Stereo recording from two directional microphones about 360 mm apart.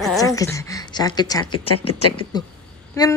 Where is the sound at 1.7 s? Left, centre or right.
Left.